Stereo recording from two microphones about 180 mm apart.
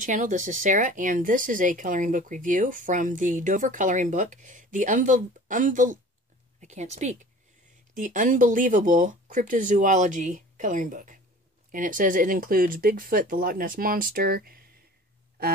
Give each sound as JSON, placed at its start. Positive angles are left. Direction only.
{"t": 0.0, "sound": "speech", "side_deg": -45}